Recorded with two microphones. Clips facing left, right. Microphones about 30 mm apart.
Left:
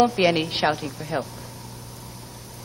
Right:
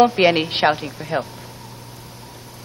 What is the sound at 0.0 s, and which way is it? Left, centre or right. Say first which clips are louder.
A woman's voice: right 5 dB; right.